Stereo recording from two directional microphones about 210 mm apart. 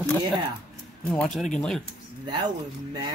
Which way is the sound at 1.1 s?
5° left (ahead or behind).